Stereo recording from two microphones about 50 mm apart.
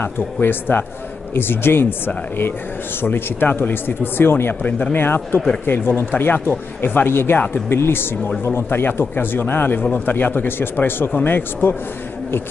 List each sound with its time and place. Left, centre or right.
0.0 s speech: left
7.3 s a man's voice: left
7.7 s a man's voice: left